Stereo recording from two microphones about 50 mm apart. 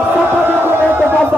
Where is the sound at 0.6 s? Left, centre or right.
Right.